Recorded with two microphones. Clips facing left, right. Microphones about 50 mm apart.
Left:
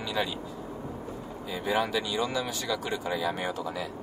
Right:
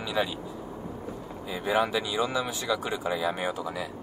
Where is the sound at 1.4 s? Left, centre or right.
Centre.